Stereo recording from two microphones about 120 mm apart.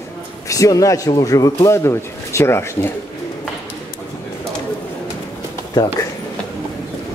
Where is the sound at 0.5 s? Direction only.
30° left (ahead or behind).